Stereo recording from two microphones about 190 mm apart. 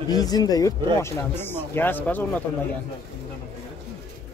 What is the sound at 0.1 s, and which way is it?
Speech, 20° left (ahead or behind).